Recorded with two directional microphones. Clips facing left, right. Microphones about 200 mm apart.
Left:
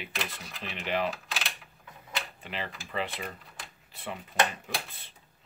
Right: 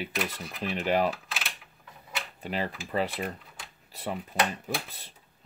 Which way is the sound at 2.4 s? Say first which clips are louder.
Right 6 dB; 40° right (ahead or behind).